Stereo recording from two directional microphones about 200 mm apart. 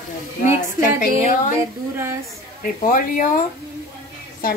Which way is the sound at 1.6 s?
10° right (ahead or behind).